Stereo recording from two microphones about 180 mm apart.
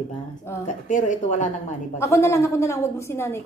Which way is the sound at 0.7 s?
45° left (ahead or behind).